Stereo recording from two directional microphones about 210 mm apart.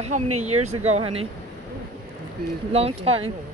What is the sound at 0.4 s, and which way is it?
Speech, 30° right (ahead or behind).